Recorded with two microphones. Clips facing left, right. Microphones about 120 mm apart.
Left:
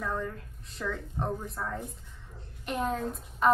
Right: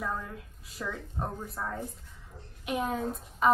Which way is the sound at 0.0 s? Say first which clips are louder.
Left 2 dB; 5° right (ahead or behind).